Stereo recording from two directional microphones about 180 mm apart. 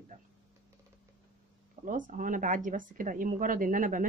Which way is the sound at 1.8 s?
45° right (ahead or behind).